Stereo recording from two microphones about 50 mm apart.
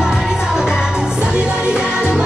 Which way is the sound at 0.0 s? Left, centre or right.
Centre.